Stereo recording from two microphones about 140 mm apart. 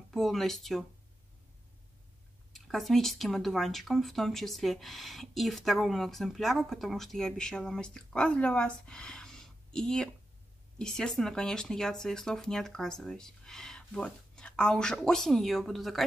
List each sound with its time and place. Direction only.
0.1 s speech: centre (ahead or behind)
2.5 s speech: centre (ahead or behind)